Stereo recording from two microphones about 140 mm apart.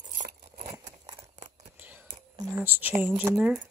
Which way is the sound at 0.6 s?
20° right (ahead or behind).